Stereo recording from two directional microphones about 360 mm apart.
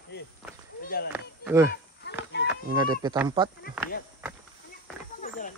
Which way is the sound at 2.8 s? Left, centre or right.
Centre.